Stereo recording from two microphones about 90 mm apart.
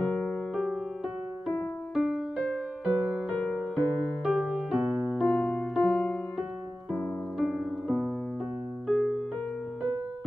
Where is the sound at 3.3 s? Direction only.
15° left (ahead or behind).